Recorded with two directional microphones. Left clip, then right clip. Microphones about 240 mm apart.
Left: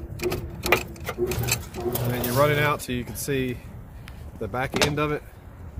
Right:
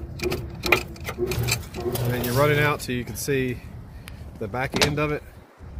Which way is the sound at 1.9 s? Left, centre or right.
Centre.